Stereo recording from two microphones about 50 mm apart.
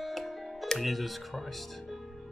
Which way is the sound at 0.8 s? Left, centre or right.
Centre.